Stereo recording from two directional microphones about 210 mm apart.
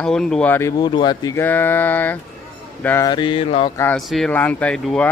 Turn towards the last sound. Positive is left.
turn(degrees=5)  # may be behind; listen again after turning